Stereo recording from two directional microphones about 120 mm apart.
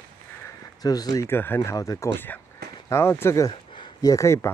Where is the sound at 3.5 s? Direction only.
40° left (ahead or behind); by 4.5 s 25° left (ahead or behind).